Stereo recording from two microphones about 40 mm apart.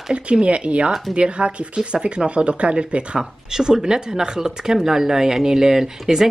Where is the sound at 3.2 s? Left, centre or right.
Centre.